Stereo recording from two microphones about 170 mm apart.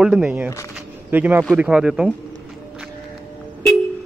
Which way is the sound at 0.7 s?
10° right (ahead or behind).